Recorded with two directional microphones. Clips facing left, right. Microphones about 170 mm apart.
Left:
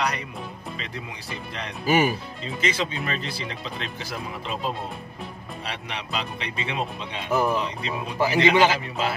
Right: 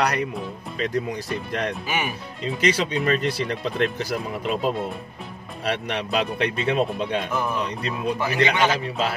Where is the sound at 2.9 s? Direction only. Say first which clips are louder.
Right 8 dB; 50° right (ahead or behind).